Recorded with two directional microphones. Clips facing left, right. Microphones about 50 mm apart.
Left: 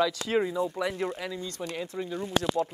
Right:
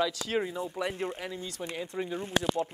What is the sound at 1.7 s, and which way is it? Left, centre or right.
Speech, centre.